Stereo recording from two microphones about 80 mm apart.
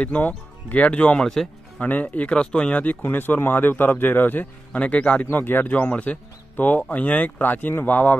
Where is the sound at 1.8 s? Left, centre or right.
Centre.